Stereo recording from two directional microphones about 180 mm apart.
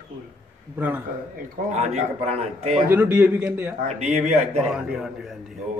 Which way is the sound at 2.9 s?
10° right (ahead or behind).